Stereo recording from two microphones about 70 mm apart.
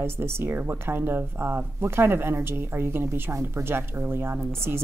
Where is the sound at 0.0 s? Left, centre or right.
Right.